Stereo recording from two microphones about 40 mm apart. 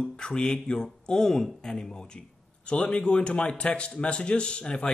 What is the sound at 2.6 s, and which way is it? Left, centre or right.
Speech, left.